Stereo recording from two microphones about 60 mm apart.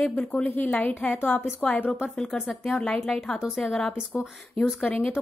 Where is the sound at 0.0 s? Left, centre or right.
Centre.